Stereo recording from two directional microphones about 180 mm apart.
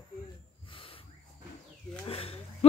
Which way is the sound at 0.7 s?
30° left (ahead or behind).